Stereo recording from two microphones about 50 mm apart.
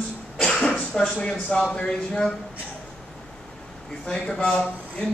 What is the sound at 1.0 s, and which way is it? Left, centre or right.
Speech, left.